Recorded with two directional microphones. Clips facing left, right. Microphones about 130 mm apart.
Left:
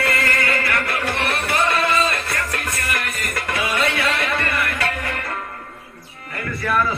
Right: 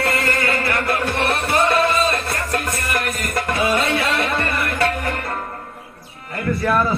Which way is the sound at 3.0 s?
40° right (ahead or behind).